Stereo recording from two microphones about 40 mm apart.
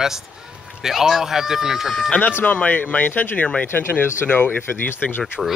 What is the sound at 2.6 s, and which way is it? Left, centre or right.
Speech, left.